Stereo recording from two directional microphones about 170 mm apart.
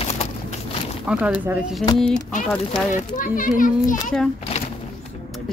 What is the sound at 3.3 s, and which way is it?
Speech, 50° left (ahead or behind).